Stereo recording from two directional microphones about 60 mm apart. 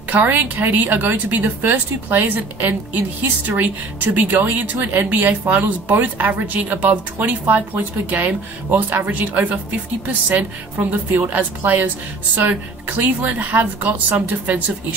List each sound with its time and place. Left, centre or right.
0.1 s speech: right
10.8 s speech: right